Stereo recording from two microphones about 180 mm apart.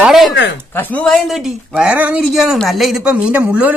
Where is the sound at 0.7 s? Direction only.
10° left (ahead or behind); by 3.7 s 5° right (ahead or behind).